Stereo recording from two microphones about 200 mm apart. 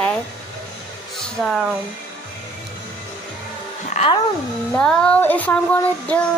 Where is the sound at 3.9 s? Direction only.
30° left (ahead or behind).